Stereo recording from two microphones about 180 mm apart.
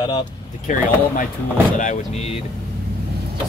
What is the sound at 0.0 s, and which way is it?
Speech, 25° left (ahead or behind).